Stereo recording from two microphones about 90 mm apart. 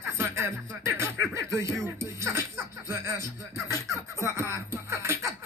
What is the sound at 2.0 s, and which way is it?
Music, 30° right (ahead or behind).